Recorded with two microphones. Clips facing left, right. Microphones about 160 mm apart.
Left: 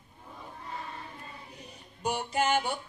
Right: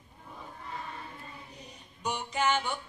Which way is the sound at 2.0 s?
35° left (ahead or behind).